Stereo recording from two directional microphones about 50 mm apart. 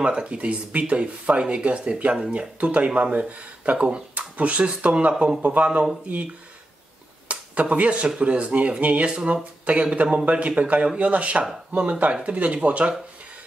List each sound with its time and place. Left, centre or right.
0.0 s speech: centre
7.2 s a sound: right
8.2 s speech: right